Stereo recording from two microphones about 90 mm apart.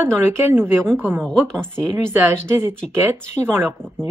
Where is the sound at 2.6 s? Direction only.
25° right (ahead or behind).